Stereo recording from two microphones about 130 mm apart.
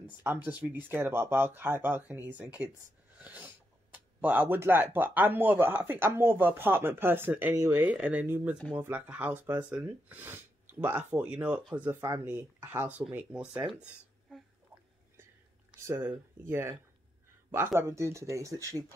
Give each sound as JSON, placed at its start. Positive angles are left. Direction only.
{"t": 0.2, "sound": "speech", "side_deg": -15}
{"t": 15.9, "sound": "speech", "side_deg": -15}
{"t": 17.7, "sound": "speech", "side_deg": -20}